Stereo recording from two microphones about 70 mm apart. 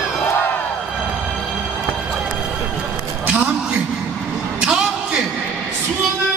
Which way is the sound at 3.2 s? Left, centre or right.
Right.